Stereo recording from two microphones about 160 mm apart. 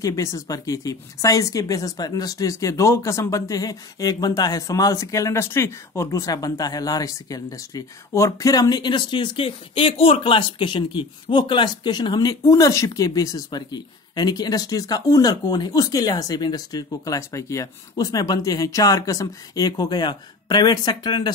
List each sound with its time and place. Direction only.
0.0 s speech: 20° left (ahead or behind)